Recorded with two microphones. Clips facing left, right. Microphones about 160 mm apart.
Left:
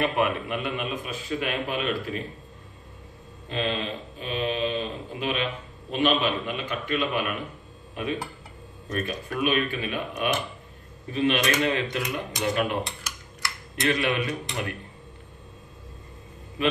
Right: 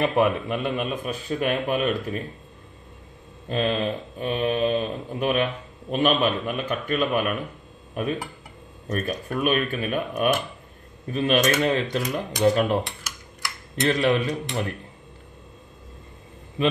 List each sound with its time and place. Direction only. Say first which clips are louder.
0.0 s speech: right 4 dB; 35° right (ahead or behind)
3.4 s a man's voice: right 5 dB; 45° right (ahead or behind)
13.8 s a man's voice: right 4 dB; 35° right (ahead or behind)